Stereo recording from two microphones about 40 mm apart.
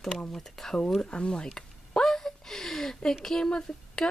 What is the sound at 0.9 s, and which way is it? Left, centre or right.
Speech, left.